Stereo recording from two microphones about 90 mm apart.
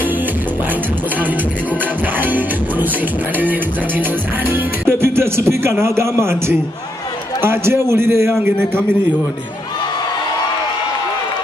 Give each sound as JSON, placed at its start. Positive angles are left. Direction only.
{"t": 2.1, "sound": "a man's voice", "side_deg": -20}